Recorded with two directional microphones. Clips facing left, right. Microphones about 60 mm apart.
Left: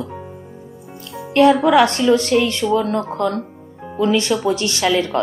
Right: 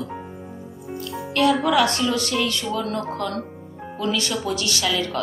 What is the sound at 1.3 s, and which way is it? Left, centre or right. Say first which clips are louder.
A woman's voice: left 7 dB; left.